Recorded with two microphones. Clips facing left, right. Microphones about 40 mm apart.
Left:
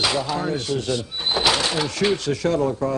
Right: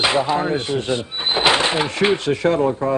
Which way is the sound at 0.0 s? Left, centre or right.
Right.